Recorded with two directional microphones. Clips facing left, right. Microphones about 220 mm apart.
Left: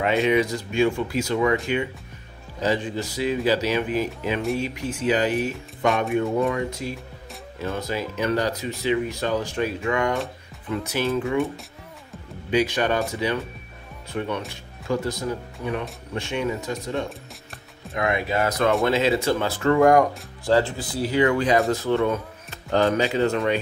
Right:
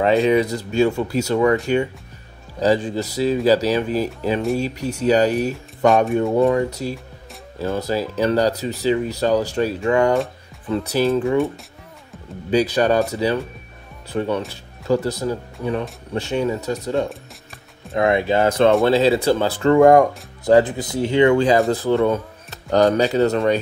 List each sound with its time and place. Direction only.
0.0 s speech: 35° right (ahead or behind)
2.6 s speech: 35° right (ahead or behind)
12.4 s speech: 35° right (ahead or behind)
17.1 s music: centre (ahead or behind)
17.9 s speech: 30° right (ahead or behind)